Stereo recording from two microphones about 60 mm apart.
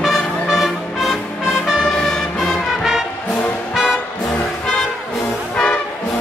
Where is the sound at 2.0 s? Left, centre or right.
Centre.